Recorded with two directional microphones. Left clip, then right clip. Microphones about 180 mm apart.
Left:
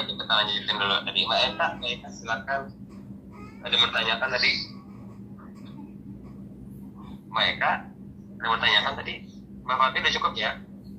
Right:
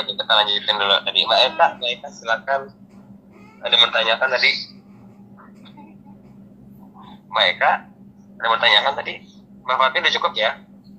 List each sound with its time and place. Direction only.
0.2 s a man's voice: 40° right (ahead or behind)
3.6 s a man's voice: 40° right (ahead or behind)
7.3 s a man's voice: 40° right (ahead or behind)